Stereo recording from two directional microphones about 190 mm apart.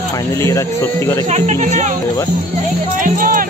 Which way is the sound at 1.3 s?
40° right (ahead or behind).